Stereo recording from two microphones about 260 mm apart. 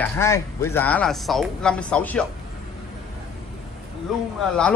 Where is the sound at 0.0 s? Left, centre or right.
Centre.